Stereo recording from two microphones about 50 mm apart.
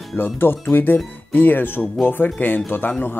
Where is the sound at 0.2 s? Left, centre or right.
Left.